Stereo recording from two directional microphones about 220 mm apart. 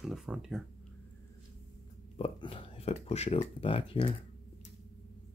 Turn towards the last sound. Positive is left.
turn(degrees=25)  # may be behind; listen again after turning